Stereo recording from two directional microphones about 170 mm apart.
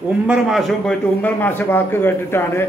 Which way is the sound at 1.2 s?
10° left (ahead or behind).